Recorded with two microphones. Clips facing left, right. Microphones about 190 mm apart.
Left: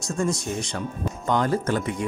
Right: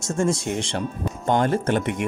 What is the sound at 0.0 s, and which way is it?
Speech, 25° right (ahead or behind).